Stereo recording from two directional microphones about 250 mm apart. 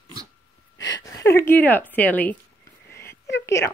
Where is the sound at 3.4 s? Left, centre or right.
Centre.